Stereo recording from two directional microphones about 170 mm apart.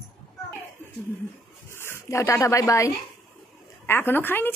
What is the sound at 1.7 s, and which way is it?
A woman's voice, 15° left (ahead or behind).